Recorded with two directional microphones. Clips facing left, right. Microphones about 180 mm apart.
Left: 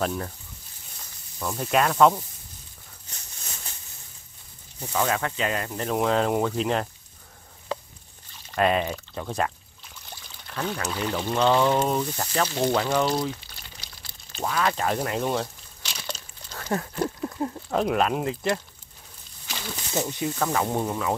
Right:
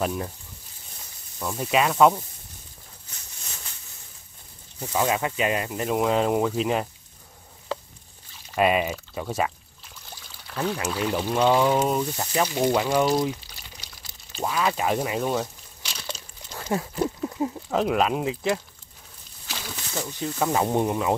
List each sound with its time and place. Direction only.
0.0 s speech: 5° right (ahead or behind)
1.4 s speech: 5° right (ahead or behind)
4.7 s speech: 20° right (ahead or behind)
8.3 s speech: 10° right (ahead or behind)
19.4 s a sound: centre (ahead or behind)
19.9 s speech: 20° left (ahead or behind)
20.5 s speech: 20° right (ahead or behind)